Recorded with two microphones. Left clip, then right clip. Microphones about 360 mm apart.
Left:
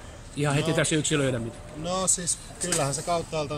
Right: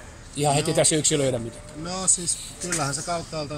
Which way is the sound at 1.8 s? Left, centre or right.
Centre.